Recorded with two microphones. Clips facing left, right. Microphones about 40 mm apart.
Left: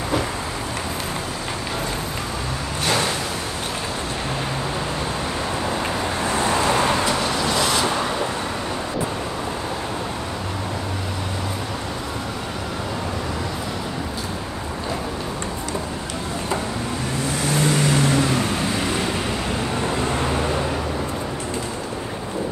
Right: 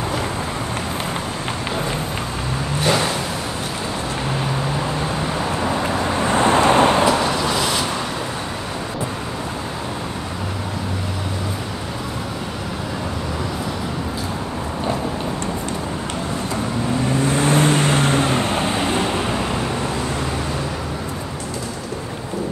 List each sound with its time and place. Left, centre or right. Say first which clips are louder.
6.3 s vehicle: right 6 dB; right
7.1 s vehicle: right 3 dB; centre
17.2 s vehicle: right 4 dB; right